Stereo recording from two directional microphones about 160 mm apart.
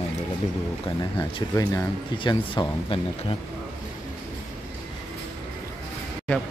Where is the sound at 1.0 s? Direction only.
20° left (ahead or behind).